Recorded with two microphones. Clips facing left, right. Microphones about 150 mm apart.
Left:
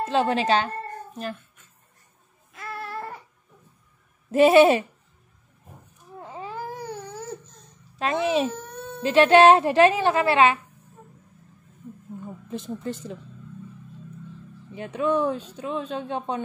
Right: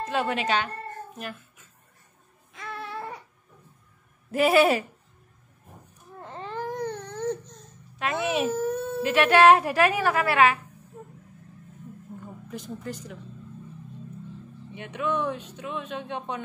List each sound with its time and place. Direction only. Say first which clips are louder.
0.0 s speech: left 5 dB; 30° left (ahead or behind)
2.5 s baby cry: left 2 dB; centre (ahead or behind)
4.3 s speech: left 5 dB; 25° left (ahead or behind)
6.1 s baby cry: even; 5° left (ahead or behind)
8.0 s speech: left 3 dB; 25° left (ahead or behind)
8.5 s a sound: right 7 dB; 5° right (ahead or behind)
9.0 s speech: left 3 dB; 25° left (ahead or behind)
12.4 s speech: left 4 dB; 25° left (ahead or behind)
14.7 s speech: left 5 dB; 35° left (ahead or behind)